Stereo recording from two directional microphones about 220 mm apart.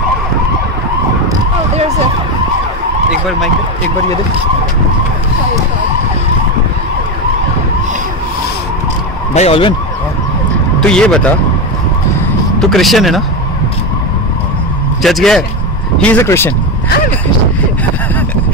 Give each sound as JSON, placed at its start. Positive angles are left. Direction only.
{"t": 9.3, "sound": "speech", "side_deg": 30}
{"t": 10.9, "sound": "speech", "side_deg": 5}
{"t": 12.5, "sound": "speech", "side_deg": 0}
{"t": 15.0, "sound": "a man's voice", "side_deg": 0}